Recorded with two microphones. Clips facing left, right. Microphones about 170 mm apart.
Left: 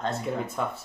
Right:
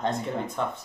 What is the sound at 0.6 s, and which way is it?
Speech, 5° left (ahead or behind).